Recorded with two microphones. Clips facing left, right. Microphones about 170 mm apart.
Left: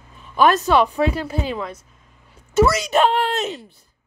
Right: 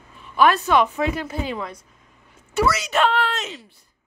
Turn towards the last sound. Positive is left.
turn(degrees=40)  # may be behind; listen again after turning